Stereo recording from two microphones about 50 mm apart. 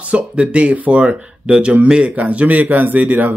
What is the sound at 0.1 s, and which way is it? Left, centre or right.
Speech, right.